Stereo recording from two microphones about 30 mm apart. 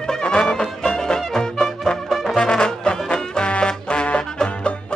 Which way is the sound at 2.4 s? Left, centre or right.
Left.